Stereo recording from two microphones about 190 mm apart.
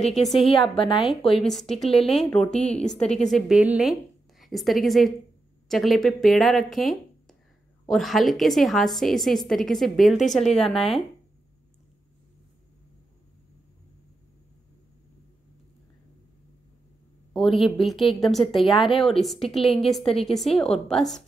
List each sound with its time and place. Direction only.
0.1 s a woman's voice: centre (ahead or behind)
0.7 s a woman's voice: 25° left (ahead or behind)
1.0 s a woman's voice: centre (ahead or behind)
2.5 s a woman's voice: 35° left (ahead or behind)
2.8 s a woman's voice: 5° left (ahead or behind)
17.3 s a woman's voice: centre (ahead or behind)
19.6 s a woman's voice: 30° left (ahead or behind)
19.9 s a woman's voice: centre (ahead or behind)